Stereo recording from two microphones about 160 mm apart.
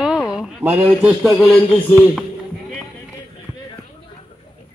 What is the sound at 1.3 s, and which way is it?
Speech, 10° left (ahead or behind).